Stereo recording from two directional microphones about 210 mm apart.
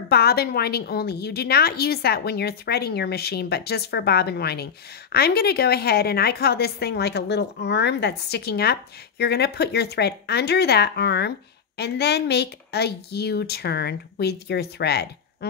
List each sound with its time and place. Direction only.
0.1 s speech: 50° left (ahead or behind)